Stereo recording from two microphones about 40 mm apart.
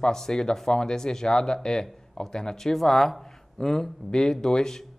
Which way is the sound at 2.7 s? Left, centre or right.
Centre.